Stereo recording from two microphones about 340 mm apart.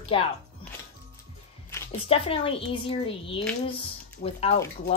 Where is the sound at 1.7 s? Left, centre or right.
Centre.